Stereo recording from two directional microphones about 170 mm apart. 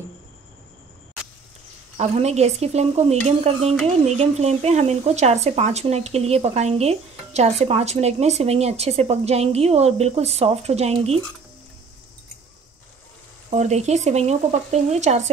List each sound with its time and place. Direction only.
2.0 s stir: 40° right (ahead or behind)
13.5 s stir: 40° right (ahead or behind)